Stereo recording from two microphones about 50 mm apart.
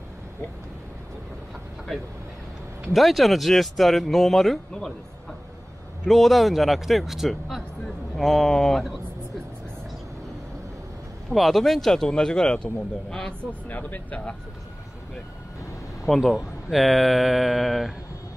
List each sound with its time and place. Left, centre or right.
2.9 s speech: centre
6.0 s speech: centre
11.3 s speech: centre
13.7 s speech: left
16.2 s speech: centre